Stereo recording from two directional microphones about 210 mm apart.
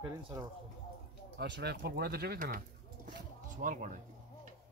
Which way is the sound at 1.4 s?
50° right (ahead or behind).